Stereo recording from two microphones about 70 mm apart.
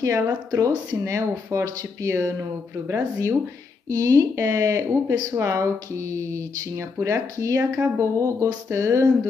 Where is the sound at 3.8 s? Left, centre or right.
Right.